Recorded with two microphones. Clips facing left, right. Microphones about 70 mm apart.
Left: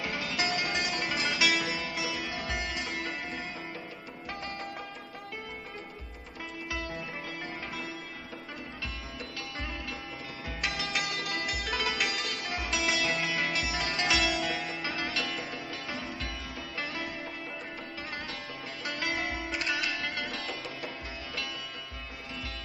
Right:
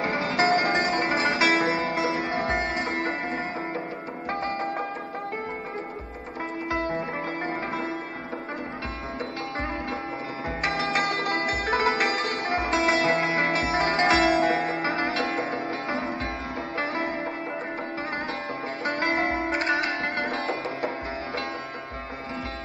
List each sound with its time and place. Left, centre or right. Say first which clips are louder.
0.0 s music: right 9 dB; right
6.7 s music: right 10 dB; right
10.6 s sitar: right 8 dB; right
18.9 s music: right 8 dB; right